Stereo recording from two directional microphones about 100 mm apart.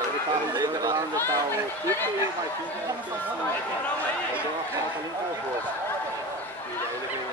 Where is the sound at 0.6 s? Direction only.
45° right (ahead or behind).